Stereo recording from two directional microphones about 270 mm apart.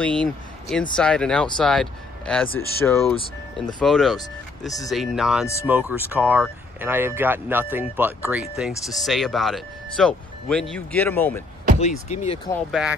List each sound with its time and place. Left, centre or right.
0.0 s speech: centre
12.1 s speech: left
12.5 s speech: centre